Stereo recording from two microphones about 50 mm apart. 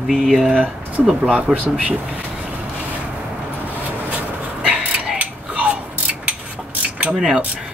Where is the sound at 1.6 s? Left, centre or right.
Centre.